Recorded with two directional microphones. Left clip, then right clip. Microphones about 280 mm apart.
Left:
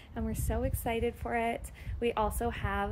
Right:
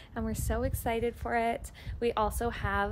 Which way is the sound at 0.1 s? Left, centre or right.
Centre.